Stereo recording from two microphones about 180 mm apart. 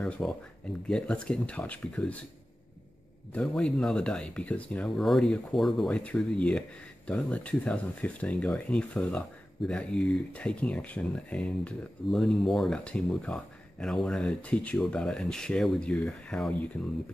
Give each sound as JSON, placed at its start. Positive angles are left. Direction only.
{"t": 0.2, "sound": "speech", "side_deg": 5}
{"t": 3.3, "sound": "speech", "side_deg": 5}